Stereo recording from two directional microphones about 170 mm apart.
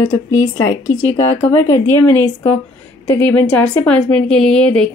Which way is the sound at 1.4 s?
10° left (ahead or behind).